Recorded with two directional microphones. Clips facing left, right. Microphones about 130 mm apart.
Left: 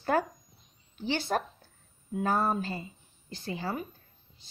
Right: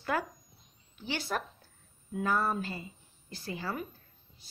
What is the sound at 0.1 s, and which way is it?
A woman's voice, 35° left (ahead or behind).